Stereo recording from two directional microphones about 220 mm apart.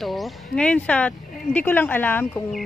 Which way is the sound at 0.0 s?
Centre (ahead or behind).